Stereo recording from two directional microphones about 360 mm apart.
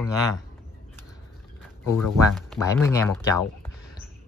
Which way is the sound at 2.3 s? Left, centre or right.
Centre.